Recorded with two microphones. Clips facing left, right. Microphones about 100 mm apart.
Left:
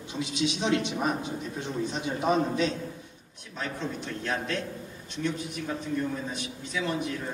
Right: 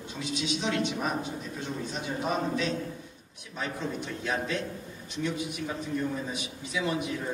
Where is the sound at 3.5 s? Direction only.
5° right (ahead or behind).